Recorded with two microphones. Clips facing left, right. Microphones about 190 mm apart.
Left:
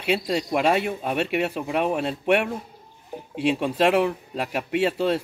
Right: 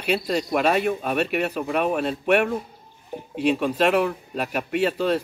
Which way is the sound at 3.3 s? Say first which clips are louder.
Right 1 dB; 25° left (ahead or behind).